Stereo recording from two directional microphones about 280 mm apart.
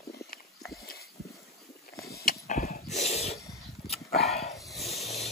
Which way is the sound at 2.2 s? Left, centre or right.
Left.